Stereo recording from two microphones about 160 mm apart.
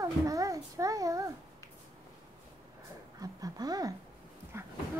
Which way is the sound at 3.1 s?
20° right (ahead or behind).